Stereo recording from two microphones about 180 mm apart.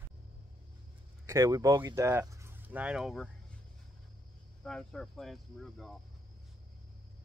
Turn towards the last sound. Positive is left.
turn(degrees=0)  # may be behind; listen again after turning